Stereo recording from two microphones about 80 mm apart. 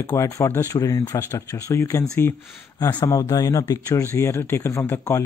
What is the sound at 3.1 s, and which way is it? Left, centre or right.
Speech, left.